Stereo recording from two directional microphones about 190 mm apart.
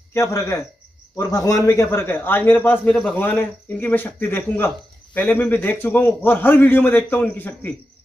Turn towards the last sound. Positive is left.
turn(degrees=10)  # may be behind; listen again after turning